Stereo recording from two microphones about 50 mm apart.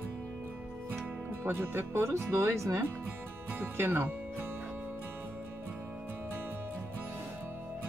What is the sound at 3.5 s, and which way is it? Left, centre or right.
Speech, right.